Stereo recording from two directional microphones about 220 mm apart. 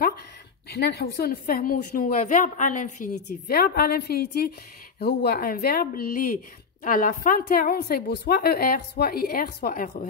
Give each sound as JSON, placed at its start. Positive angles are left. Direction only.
{"t": 0.7, "sound": "speech", "side_deg": 45}